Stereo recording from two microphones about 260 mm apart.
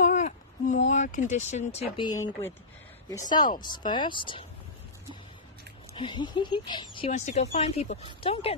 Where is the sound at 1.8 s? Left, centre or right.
Centre.